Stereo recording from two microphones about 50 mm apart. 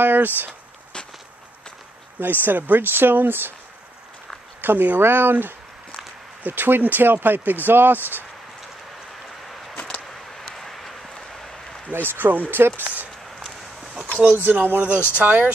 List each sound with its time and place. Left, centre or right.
0.0 s speech: right
2.4 s speech: right
4.6 s speech: right
10.4 s vehicle: centre
11.9 s speech: right
14.4 s speech: right
14.8 s speech: right